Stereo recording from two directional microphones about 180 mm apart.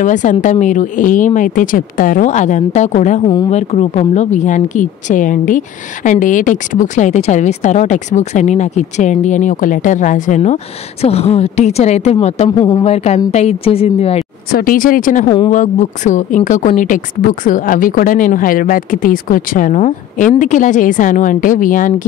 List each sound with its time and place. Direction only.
0.0 s a woman's voice: 45° left (ahead or behind)
12.4 s speech: 25° left (ahead or behind)
14.5 s a woman's voice: 50° left (ahead or behind)
15.2 s speech: 25° left (ahead or behind)
15.5 s a woman's voice: 45° left (ahead or behind)